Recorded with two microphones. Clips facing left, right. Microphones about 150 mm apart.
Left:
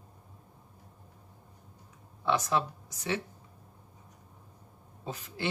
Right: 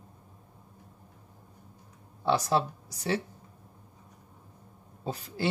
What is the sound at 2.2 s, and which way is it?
Speech, 35° right (ahead or behind).